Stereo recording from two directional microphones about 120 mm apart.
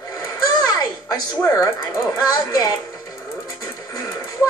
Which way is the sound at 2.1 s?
30° left (ahead or behind).